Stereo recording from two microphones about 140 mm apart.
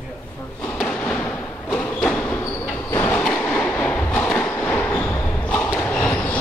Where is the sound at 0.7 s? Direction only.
10° left (ahead or behind).